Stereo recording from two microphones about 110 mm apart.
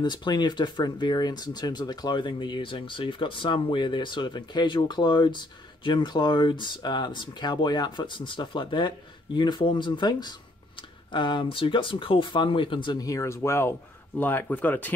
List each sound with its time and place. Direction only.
0.0 s speech: 40° left (ahead or behind); by 15.0 s 15° left (ahead or behind)